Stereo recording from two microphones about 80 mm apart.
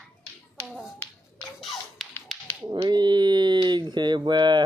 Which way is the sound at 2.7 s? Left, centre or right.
Right.